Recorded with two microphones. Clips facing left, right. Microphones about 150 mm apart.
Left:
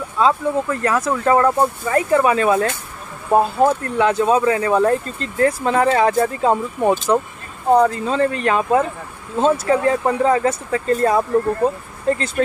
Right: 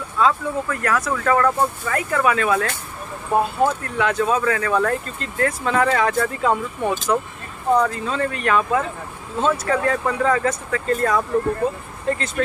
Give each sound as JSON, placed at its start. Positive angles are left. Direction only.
{"t": 0.2, "sound": "speech", "side_deg": 25}